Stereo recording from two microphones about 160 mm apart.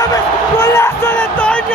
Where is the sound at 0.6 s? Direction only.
15° left (ahead or behind).